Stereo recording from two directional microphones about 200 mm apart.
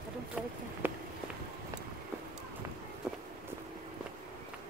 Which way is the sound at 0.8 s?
10° right (ahead or behind).